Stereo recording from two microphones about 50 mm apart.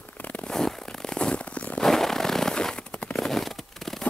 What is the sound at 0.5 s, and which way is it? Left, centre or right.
Zipper, centre.